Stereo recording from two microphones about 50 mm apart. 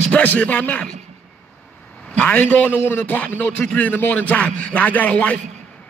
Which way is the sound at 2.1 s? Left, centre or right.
Left.